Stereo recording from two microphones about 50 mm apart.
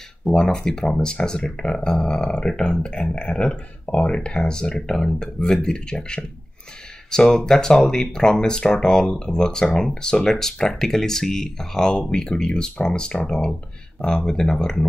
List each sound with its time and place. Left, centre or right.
0.2 s speech: centre